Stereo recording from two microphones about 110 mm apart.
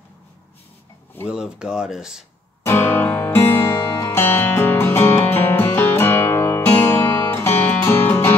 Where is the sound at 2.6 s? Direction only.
20° left (ahead or behind).